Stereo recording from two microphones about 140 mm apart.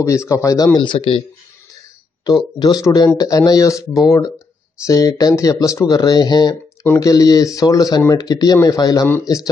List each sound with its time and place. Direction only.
0.0 s speech: 20° left (ahead or behind)
0.7 s speech: 35° left (ahead or behind)
2.2 s speech: 30° left (ahead or behind)